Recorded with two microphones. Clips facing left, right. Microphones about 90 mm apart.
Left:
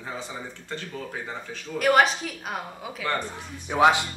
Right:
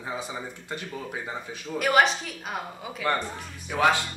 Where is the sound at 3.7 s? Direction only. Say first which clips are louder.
Left 3 dB; 20° left (ahead or behind).